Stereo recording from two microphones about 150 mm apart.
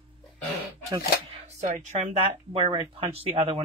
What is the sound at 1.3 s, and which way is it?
Speech, 50° right (ahead or behind).